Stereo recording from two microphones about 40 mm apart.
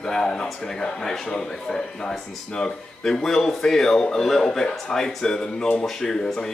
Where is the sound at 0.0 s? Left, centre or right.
Centre.